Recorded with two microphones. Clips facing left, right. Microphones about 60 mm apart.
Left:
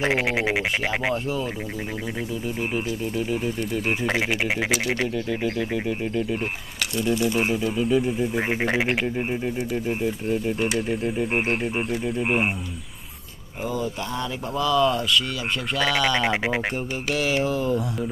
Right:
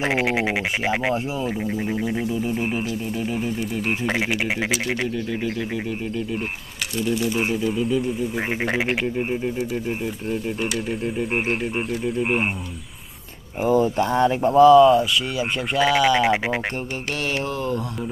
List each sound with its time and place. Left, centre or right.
0.0 s speech: centre
2.4 s speech: centre
13.7 s speech: right
14.5 s speech: right
14.8 s speech: centre